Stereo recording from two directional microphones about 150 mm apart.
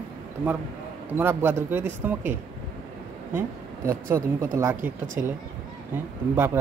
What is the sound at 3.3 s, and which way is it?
Speech, 15° right (ahead or behind).